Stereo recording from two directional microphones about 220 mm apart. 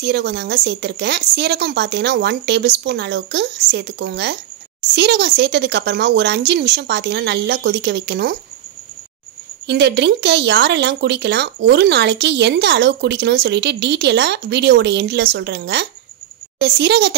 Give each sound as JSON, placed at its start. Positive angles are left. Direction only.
{"t": 0.0, "sound": "speech", "side_deg": -50}
{"t": 9.7, "sound": "speech", "side_deg": -50}